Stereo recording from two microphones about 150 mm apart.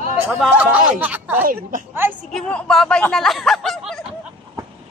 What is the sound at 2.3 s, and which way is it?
Speech, 5° left (ahead or behind).